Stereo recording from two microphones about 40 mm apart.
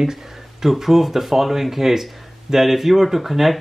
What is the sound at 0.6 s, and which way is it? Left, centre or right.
Speech, centre.